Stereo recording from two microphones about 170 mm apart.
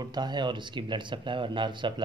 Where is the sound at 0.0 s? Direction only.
25° right (ahead or behind).